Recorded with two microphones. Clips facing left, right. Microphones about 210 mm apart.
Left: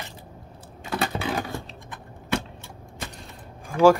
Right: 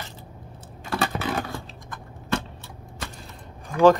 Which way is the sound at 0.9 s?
15° left (ahead or behind).